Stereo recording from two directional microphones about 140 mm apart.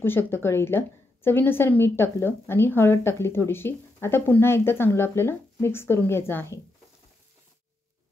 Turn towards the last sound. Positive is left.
turn(degrees=15)  # may be behind; listen again after turning